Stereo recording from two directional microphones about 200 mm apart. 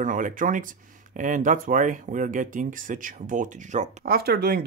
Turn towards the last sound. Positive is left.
turn(degrees=-50)  # may be behind; listen again after turning